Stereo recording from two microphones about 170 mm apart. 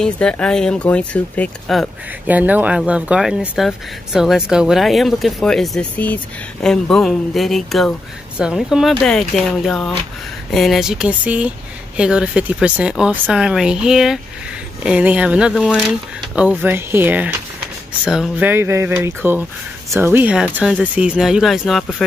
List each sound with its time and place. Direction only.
0.0 s speech: 5° left (ahead or behind)
2.2 s speech: 10° right (ahead or behind)